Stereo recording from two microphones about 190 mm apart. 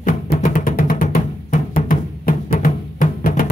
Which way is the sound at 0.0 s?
45° left (ahead or behind).